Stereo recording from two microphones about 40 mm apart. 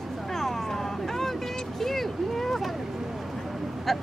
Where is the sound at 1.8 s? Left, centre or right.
Centre.